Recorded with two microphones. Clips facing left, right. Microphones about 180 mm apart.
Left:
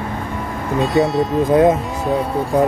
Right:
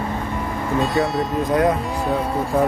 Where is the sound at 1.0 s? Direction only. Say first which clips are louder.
Left 5 dB; 20° left (ahead or behind).